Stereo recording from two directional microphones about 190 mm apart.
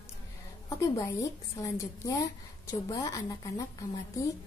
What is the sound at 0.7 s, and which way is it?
A woman's voice, 15° left (ahead or behind).